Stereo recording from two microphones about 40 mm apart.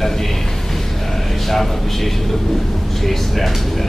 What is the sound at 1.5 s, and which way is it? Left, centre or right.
Speech, centre.